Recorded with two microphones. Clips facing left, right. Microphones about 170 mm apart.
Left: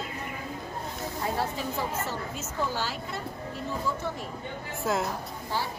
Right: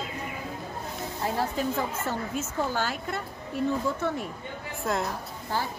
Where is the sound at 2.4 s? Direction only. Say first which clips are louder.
Right 2 dB; 50° right (ahead or behind).